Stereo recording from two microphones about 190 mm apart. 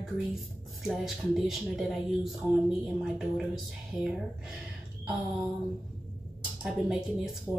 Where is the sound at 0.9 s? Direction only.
Centre (ahead or behind).